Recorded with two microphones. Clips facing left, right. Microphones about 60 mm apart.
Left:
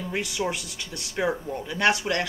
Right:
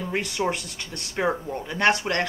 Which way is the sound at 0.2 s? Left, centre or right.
Right.